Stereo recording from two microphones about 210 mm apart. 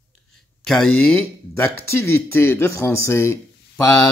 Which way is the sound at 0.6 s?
Centre (ahead or behind).